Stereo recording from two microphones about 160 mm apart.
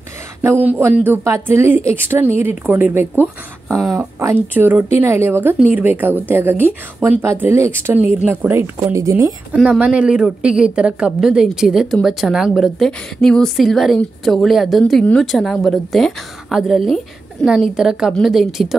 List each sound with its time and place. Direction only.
0.7 s a woman's voice: 10° right (ahead or behind)
9.5 s a woman's voice: 10° right (ahead or behind)